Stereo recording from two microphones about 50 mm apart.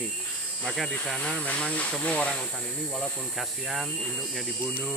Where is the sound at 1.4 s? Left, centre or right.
Left.